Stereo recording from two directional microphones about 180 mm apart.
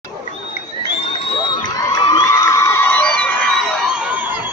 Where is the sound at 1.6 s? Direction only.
25° left (ahead or behind); by 4.3 s 5° right (ahead or behind).